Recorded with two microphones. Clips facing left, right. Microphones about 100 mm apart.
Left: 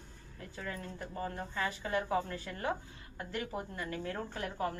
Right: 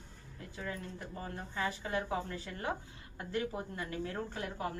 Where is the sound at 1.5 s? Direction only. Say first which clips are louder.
Right 1 dB; 20° right (ahead or behind).